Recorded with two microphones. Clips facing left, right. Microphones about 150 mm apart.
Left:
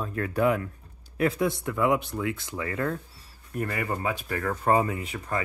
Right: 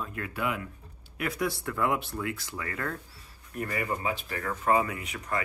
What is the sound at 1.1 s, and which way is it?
Speech, 25° left (ahead or behind).